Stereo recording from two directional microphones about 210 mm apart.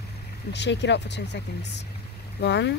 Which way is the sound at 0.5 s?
55° left (ahead or behind).